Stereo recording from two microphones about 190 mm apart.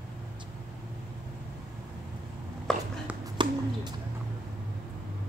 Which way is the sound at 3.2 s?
25° right (ahead or behind).